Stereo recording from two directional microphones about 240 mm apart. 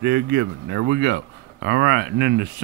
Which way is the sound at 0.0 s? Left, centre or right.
Right.